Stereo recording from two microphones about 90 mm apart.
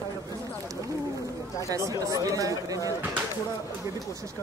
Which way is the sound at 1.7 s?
40° right (ahead or behind).